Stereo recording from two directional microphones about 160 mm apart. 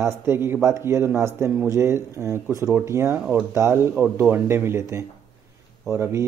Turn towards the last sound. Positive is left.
turn(degrees=-15)  # may be behind; listen again after turning